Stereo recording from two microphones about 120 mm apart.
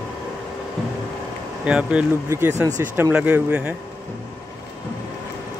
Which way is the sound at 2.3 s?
20° right (ahead or behind).